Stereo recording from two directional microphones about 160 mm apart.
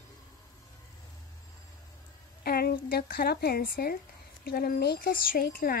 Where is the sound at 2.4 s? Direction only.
70° left (ahead or behind).